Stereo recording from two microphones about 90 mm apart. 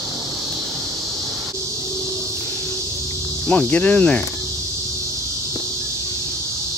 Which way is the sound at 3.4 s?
15° left (ahead or behind).